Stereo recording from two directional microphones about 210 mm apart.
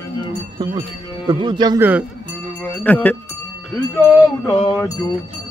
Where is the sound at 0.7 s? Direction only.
20° right (ahead or behind).